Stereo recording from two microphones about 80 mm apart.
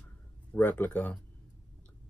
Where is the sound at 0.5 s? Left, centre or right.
Left.